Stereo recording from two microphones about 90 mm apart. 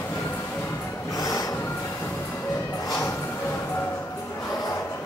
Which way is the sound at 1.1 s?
40° left (ahead or behind).